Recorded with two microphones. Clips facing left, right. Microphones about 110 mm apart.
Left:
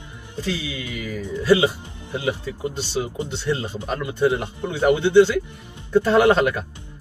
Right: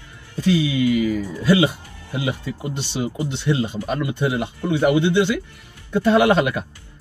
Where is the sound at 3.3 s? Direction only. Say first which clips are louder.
Right 3 dB; 15° right (ahead or behind).